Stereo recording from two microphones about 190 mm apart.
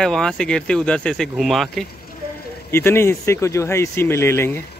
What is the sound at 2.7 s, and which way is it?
Speech, 15° left (ahead or behind).